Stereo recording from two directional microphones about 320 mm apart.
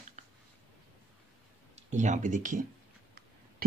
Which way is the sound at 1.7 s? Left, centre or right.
Right.